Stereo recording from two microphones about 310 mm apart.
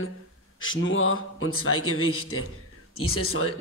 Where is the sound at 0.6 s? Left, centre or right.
Left.